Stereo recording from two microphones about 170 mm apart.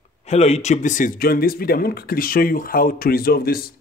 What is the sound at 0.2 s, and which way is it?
Speech, 40° left (ahead or behind).